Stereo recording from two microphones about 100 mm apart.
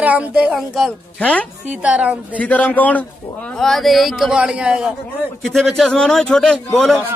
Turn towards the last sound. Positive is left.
turn(degrees=0)  # may be behind; listen again after turning